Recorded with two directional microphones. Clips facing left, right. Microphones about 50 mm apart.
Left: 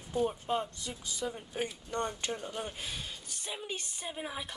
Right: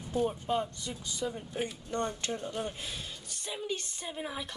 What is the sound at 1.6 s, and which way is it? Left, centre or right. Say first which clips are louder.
Speech: right 1 dB; centre.